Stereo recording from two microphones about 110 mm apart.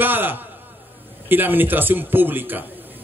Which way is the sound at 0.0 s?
20° right (ahead or behind).